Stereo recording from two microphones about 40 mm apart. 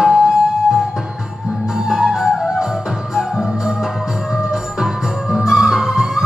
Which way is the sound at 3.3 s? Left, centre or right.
Centre.